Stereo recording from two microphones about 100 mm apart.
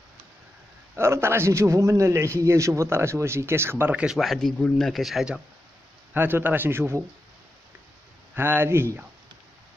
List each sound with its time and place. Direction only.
0.9 s a man's voice: 25° right (ahead or behind)
3.9 s speech: 10° right (ahead or behind)
4.2 s speech: centre (ahead or behind)
6.1 s a man's voice: 20° right (ahead or behind)
8.4 s a man's voice: 25° right (ahead or behind)